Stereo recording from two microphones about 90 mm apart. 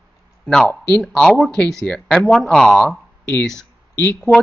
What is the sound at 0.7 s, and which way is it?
Speech, 15° left (ahead or behind).